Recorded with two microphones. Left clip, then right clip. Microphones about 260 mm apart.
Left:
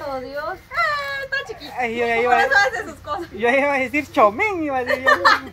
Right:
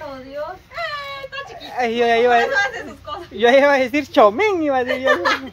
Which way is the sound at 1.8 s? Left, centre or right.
Right.